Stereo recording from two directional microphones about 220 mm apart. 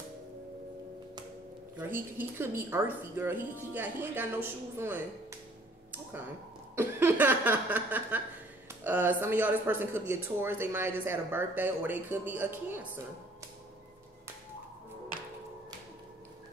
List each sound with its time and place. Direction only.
1.8 s speech: 10° right (ahead or behind)
6.7 s a sound: 10° right (ahead or behind)
8.6 s speech: 10° right (ahead or behind)